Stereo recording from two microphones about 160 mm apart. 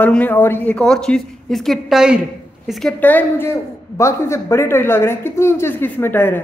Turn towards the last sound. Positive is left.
turn(degrees=15)  # may be behind; listen again after turning